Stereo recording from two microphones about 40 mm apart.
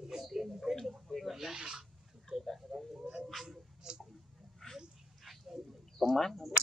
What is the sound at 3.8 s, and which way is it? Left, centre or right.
Tick-tock, centre.